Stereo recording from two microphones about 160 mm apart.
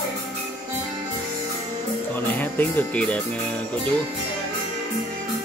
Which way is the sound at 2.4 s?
10° left (ahead or behind).